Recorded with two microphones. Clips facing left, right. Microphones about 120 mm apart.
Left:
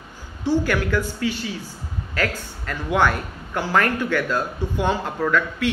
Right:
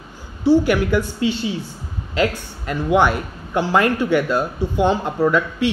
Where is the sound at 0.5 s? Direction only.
15° right (ahead or behind).